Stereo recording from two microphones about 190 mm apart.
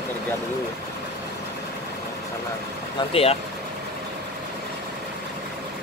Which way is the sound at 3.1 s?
30° left (ahead or behind).